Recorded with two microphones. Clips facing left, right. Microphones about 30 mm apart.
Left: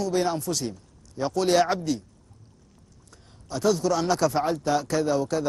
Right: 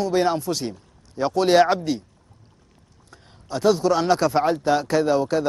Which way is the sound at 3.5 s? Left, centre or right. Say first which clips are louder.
Right 4 dB; right.